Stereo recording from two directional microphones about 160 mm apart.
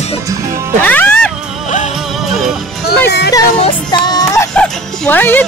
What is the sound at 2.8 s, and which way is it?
Music, 90° left.